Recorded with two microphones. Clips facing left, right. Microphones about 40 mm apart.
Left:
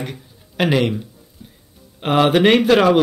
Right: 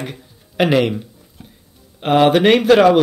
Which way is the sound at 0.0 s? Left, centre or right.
Centre.